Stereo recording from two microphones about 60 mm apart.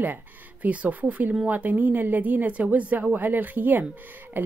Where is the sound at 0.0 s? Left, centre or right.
Right.